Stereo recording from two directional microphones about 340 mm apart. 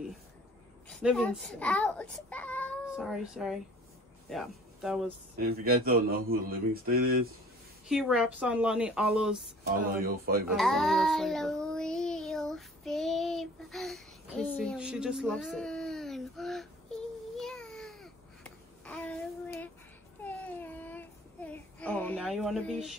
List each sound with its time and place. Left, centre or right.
0.8 s a child's voice: centre
5.4 s speech: right
7.9 s a woman's voice: centre
10.5 s child singing: centre